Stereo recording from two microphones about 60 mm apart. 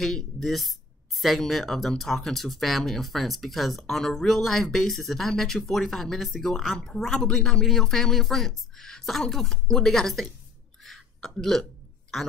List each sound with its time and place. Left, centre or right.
0.0 s speech: centre
10.8 s whispering: centre